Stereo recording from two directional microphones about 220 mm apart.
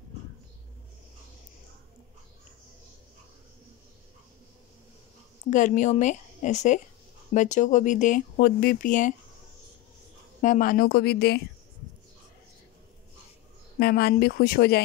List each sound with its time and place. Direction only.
5.5 s speech: 35° left (ahead or behind)
10.4 s speech: 35° left (ahead or behind)
13.7 s speech: 45° left (ahead or behind)